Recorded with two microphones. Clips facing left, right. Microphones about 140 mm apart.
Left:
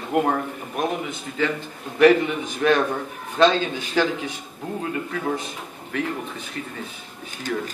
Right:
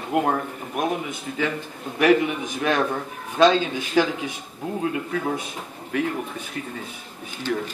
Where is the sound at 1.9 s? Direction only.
5° right (ahead or behind).